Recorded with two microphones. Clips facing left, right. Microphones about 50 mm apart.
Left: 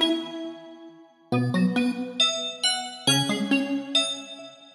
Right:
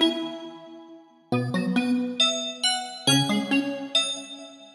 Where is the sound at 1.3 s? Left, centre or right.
Centre.